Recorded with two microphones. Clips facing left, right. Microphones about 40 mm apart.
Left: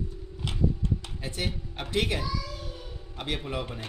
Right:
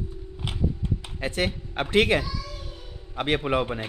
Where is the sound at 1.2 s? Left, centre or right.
Right.